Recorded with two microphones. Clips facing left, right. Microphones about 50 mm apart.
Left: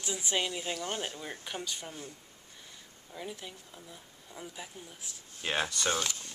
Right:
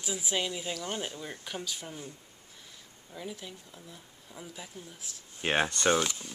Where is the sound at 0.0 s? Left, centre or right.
Centre.